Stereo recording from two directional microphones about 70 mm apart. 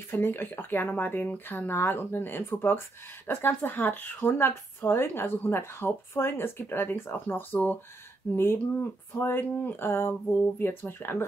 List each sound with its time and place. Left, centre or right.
0.1 s a woman's voice: left
4.2 s a woman's voice: left